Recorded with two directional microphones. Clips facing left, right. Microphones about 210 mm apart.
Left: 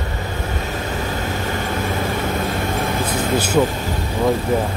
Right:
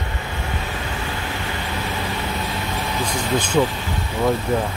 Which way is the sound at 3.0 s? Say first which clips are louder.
Left 3 dB; 5° left (ahead or behind).